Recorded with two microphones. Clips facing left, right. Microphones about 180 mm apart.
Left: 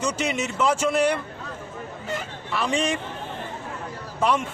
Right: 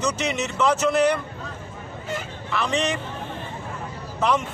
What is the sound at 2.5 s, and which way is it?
Speech, 10° left (ahead or behind).